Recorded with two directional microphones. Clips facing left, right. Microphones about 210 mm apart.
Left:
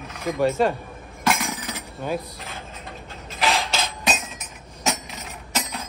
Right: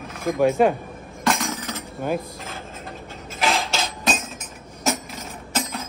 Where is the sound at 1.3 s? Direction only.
15° left (ahead or behind).